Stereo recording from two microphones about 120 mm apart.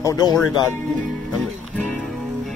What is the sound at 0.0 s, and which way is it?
Speech, 30° left (ahead or behind).